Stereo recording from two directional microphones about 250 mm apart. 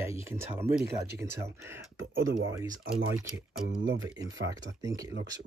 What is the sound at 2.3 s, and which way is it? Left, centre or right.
Speech, right.